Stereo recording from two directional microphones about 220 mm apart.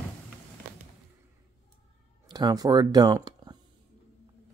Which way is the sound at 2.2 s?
20° right (ahead or behind).